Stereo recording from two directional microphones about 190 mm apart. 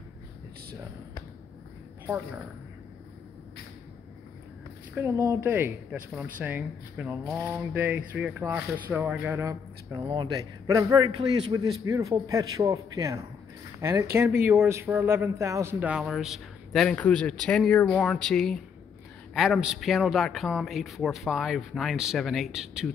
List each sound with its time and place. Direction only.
4.9 s speech: 15° right (ahead or behind)
10.0 s a man's voice: 25° right (ahead or behind); by 22.8 s 5° right (ahead or behind)